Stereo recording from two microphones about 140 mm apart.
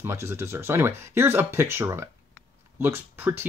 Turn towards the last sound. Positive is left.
turn(degrees=-15)  # may be behind; listen again after turning